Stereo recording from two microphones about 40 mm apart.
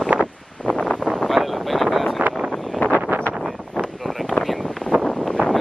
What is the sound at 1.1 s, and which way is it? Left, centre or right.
Wind noise, centre.